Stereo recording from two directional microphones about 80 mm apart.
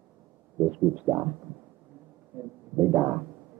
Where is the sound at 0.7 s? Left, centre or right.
Right.